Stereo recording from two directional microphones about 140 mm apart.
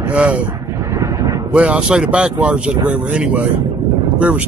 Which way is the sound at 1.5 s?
5° right (ahead or behind).